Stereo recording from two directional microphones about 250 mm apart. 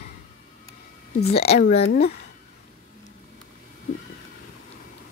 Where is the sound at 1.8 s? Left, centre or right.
Left.